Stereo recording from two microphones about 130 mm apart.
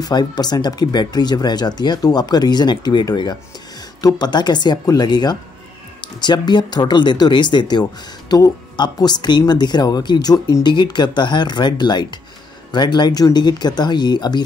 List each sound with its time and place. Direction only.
0.0 s speech: 30° left (ahead or behind)